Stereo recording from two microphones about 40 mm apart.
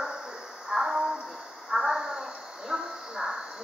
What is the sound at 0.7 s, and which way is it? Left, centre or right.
Music, centre.